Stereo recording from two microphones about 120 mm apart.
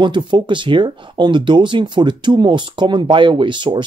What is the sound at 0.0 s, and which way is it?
Speech, 40° right (ahead or behind).